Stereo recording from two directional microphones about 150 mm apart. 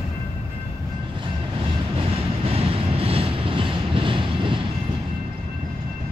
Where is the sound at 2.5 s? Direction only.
40° right (ahead or behind).